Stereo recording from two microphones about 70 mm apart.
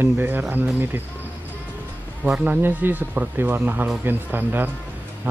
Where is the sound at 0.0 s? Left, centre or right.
Right.